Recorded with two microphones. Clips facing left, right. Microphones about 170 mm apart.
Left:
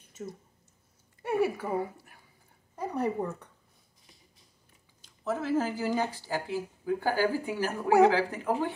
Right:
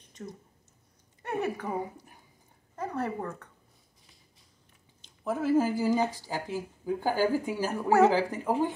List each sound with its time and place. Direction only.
0.1 s a sound: 5° left (ahead or behind)
1.2 s speech: 10° left (ahead or behind)
1.8 s a woman's voice: 20° right (ahead or behind)
2.7 s speech: 15° left (ahead or behind)
5.2 s speech: 10° right (ahead or behind)